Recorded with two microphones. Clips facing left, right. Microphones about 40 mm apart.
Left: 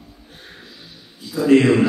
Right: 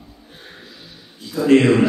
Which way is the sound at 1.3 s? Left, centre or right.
Right.